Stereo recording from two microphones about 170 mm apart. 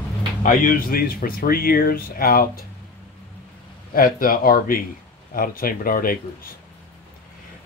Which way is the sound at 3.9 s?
55° left (ahead or behind).